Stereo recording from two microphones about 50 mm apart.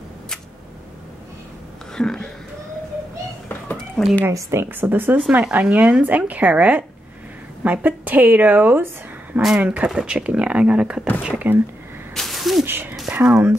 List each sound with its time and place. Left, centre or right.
2.0 s speech: centre
4.0 s speech: centre
4.3 s a woman's voice: right
4.6 s speech: right
5.5 s speech: right
9.9 s speech: right
11.3 s speech: right
12.1 s a sound: centre
12.6 s speech: right